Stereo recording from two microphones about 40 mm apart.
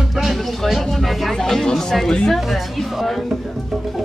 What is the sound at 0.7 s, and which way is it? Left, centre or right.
A woman's voice, centre.